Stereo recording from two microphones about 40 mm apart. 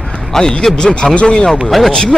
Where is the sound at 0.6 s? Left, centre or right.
Left.